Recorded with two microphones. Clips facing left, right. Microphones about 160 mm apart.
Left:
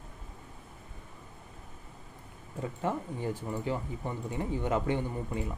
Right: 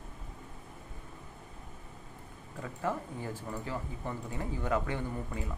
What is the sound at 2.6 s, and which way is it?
Speech, 20° left (ahead or behind).